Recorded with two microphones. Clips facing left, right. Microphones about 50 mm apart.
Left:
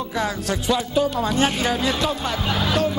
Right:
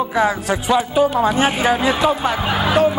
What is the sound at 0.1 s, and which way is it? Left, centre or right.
Speech, centre.